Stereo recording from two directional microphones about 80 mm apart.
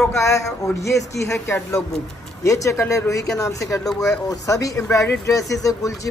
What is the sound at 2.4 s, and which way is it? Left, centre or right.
Speech, left.